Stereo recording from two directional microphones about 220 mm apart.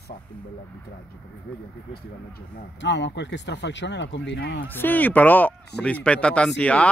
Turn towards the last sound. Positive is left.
turn(degrees=5)  # may be behind; listen again after turning